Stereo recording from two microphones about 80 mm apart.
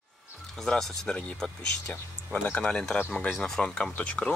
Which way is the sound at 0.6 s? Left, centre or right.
Centre.